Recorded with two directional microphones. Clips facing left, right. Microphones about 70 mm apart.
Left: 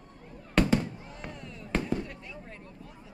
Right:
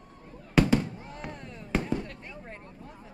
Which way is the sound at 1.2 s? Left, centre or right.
Centre.